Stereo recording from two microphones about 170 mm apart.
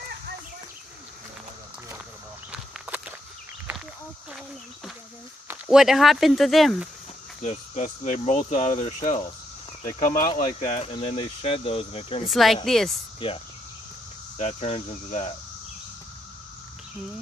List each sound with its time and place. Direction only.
2.5 s walk: 10° right (ahead or behind)
5.5 s speech: 5° right (ahead or behind)
7.4 s speech: 45° left (ahead or behind)
10.7 s speech: 35° left (ahead or behind)
12.3 s speech: centre (ahead or behind)
13.2 s speech: 30° left (ahead or behind)
14.4 s speech: 40° left (ahead or behind)